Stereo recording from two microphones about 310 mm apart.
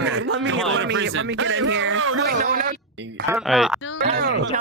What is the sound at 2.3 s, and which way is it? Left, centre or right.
Speech, right.